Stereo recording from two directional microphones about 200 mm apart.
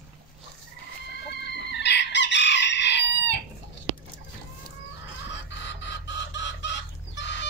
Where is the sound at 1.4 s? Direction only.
60° left (ahead or behind).